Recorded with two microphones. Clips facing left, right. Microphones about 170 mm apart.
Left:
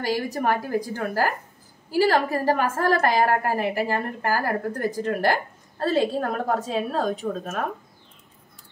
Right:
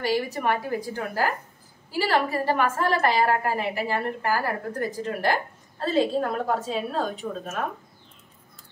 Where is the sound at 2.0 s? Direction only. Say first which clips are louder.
Left 1 dB; 40° left (ahead or behind).